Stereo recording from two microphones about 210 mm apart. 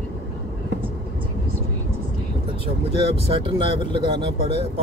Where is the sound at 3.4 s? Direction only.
25° right (ahead or behind).